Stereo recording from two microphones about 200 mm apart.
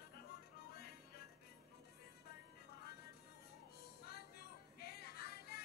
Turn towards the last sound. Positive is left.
turn(degrees=50)  # may be behind; listen again after turning